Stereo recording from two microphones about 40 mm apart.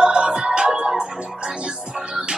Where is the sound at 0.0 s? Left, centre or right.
Centre.